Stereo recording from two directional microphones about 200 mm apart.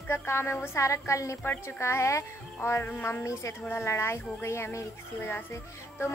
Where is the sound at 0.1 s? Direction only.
10° left (ahead or behind).